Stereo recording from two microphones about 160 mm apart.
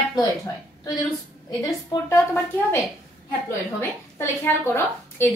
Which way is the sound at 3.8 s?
15° left (ahead or behind).